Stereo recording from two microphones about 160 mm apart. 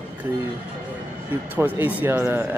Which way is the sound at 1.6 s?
10° right (ahead or behind).